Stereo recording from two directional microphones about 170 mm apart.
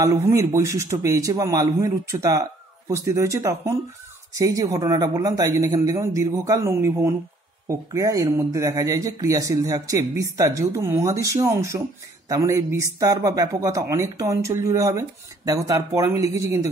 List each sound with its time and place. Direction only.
0.0 s speech: 20° right (ahead or behind)